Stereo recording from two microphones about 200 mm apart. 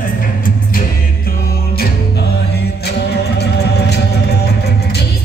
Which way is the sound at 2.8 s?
55° left (ahead or behind).